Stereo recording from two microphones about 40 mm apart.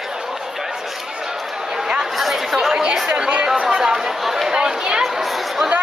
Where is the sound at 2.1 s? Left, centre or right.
Centre.